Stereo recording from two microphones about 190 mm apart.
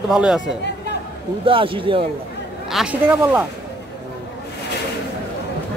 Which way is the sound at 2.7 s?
5° right (ahead or behind).